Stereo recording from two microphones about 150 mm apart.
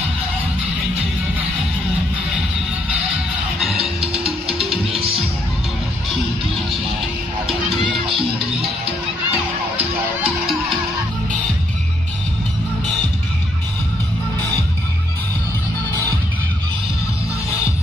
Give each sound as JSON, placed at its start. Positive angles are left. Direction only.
{"t": 3.7, "sound": "music", "side_deg": -40}
{"t": 8.5, "sound": "music", "side_deg": -40}
{"t": 9.3, "sound": "music", "side_deg": -5}